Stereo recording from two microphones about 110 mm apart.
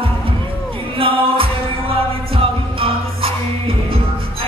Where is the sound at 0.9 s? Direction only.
55° right (ahead or behind).